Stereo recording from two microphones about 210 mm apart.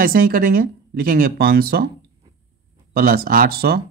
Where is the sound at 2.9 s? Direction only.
45° right (ahead or behind).